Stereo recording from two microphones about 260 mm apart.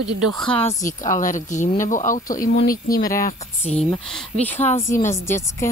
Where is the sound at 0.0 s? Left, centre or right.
Right.